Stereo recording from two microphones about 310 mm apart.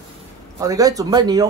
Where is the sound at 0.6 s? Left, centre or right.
Centre.